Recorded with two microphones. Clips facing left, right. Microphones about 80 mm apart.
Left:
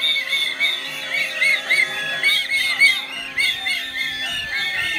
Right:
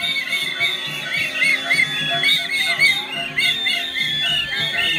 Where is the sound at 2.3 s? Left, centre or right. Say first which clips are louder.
Even; right.